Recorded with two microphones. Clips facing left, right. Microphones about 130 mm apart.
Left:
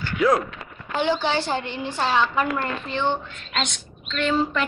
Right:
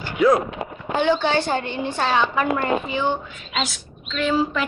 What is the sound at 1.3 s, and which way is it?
Speech, 55° right (ahead or behind).